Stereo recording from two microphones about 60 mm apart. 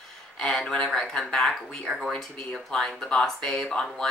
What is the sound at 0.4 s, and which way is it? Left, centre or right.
Speech, centre.